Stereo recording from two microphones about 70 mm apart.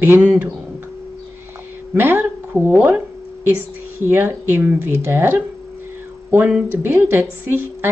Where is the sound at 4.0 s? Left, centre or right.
Right.